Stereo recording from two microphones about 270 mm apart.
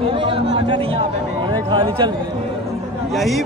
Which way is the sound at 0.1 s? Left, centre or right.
Centre.